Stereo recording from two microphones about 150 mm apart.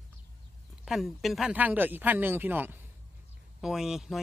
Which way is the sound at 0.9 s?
Centre (ahead or behind).